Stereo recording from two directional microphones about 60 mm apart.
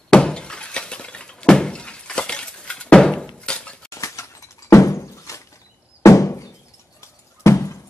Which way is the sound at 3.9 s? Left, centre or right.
Left.